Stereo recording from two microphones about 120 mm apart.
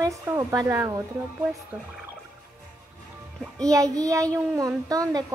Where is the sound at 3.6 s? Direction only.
30° right (ahead or behind).